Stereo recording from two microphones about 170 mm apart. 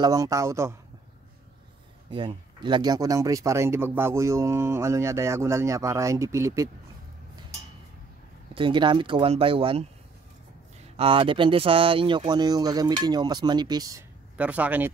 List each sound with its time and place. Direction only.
0.0 s speech: 20° right (ahead or behind)
2.0 s speech: 30° right (ahead or behind)
8.5 s speech: 30° right (ahead or behind)
11.0 s speech: 30° right (ahead or behind)
14.3 s speech: 10° right (ahead or behind)